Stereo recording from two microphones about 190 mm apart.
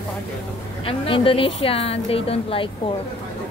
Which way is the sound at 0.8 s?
30° left (ahead or behind).